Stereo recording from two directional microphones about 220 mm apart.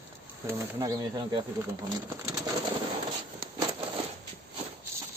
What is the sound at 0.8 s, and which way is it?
Speech, 20° right (ahead or behind).